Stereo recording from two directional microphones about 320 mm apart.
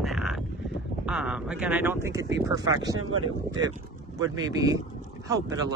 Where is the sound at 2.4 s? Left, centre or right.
Centre.